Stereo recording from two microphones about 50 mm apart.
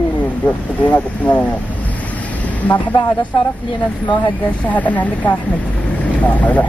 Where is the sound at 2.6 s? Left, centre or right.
Left.